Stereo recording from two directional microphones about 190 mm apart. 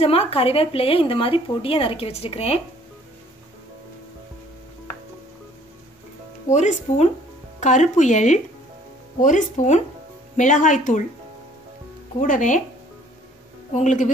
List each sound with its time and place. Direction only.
0.0 s a woman's voice: 30° left (ahead or behind)
6.5 s a woman's voice: 40° left (ahead or behind)
12.2 s a woman's voice: 40° left (ahead or behind)
13.7 s a woman's voice: 40° left (ahead or behind)